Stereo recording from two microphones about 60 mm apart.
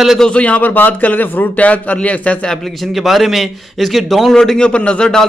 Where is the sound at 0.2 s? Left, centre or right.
Centre.